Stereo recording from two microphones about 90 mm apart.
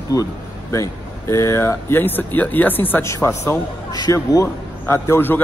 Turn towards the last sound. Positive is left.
turn(degrees=25)  # may be behind; listen again after turning